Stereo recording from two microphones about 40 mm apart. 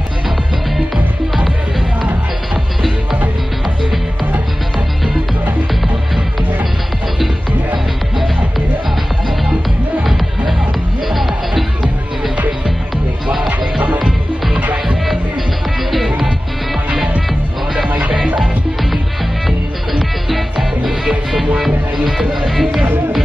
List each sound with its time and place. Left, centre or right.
11.1 s music: centre
13.7 s music: right
15.9 s music: centre
17.8 s music: right
18.1 s music: centre
19.9 s music: centre